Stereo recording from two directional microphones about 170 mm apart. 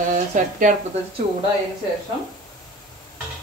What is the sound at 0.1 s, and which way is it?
Speech, 45° right (ahead or behind).